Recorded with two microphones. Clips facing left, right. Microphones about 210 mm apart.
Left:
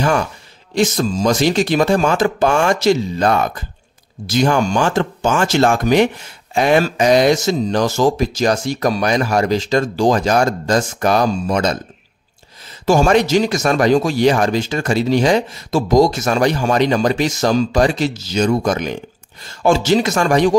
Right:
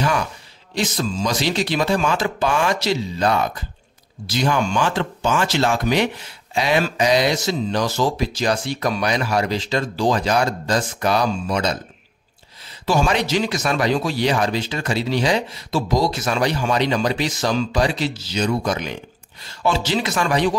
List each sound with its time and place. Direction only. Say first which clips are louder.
0.7 s speech: left 6 dB; 45° left (ahead or behind)
12.8 s speech: left 6 dB; 45° left (ahead or behind)